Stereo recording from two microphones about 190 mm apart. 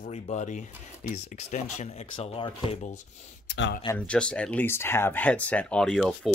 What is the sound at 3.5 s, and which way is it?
Speech, 55° left (ahead or behind).